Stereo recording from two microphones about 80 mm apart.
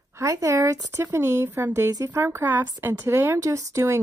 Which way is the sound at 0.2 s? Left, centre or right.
Right.